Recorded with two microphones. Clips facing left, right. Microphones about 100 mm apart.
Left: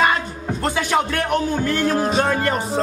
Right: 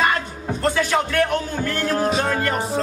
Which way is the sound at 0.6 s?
15° left (ahead or behind).